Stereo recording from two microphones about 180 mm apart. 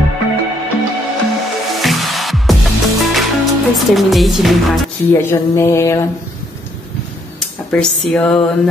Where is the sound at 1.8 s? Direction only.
Centre (ahead or behind).